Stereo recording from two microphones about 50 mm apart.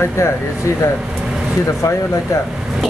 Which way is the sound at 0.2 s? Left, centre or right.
Left.